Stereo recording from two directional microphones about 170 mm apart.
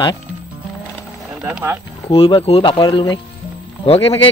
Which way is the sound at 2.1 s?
35° left (ahead or behind).